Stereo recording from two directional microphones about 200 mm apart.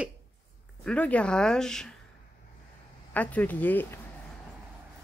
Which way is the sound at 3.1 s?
10° left (ahead or behind).